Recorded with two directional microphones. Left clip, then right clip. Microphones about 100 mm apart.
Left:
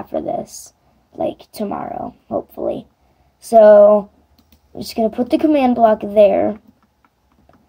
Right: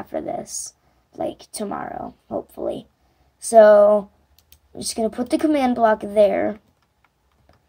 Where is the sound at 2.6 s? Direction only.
10° right (ahead or behind).